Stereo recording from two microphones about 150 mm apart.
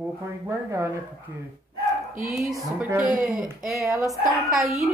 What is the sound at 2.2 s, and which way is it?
A woman's voice, centre (ahead or behind).